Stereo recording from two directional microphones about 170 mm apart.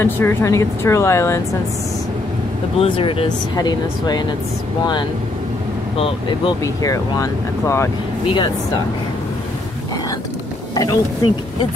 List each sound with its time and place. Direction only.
0.0 s speech: 15° left (ahead or behind)
2.8 s speech: 30° left (ahead or behind)
5.9 s speech: 35° left (ahead or behind)
6.6 s speech: 20° left (ahead or behind)
10.7 s speech: 20° left (ahead or behind)